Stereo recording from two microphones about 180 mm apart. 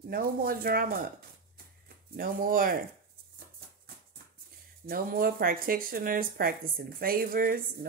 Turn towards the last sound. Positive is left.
turn(degrees=-50)  # may be behind; listen again after turning